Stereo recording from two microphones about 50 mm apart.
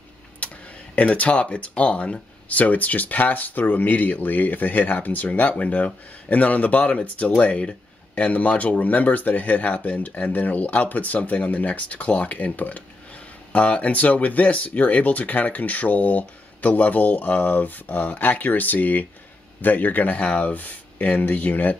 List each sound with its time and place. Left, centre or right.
0.4 s tick-tock: left
0.9 s speech: left